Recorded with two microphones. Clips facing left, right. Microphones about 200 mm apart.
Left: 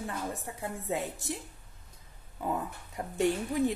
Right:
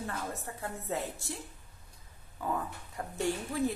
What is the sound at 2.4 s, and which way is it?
Speech, 20° left (ahead or behind).